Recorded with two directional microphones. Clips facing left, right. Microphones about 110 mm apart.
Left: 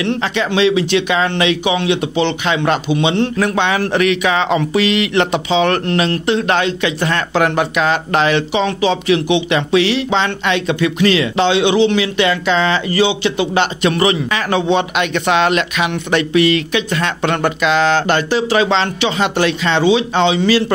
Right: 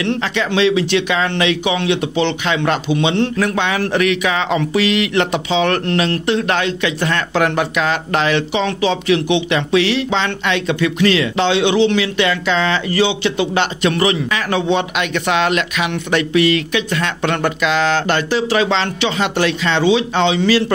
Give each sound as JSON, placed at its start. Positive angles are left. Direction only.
{"t": 0.2, "sound": "speech", "side_deg": 20}